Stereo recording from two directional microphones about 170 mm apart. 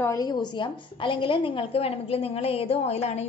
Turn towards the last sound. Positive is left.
turn(degrees=40)  # may be behind; listen again after turning